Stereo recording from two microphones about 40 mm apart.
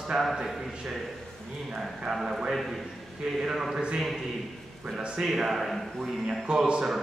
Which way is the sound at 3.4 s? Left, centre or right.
Centre.